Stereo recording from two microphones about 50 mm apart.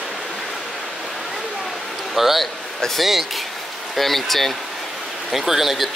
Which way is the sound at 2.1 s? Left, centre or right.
Centre.